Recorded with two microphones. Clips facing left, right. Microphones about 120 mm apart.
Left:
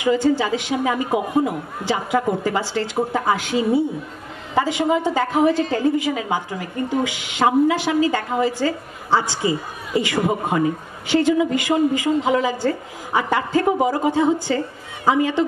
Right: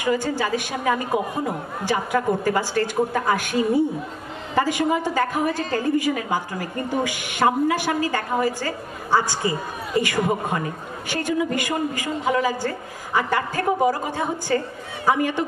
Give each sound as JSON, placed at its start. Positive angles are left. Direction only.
{"t": 0.0, "sound": "a woman's voice", "side_deg": 20}